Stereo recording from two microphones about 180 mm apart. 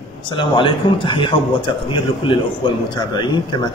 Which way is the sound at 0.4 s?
30° left (ahead or behind).